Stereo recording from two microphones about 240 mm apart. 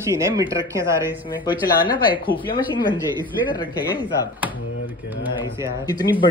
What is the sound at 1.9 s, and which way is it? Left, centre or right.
Speech, centre.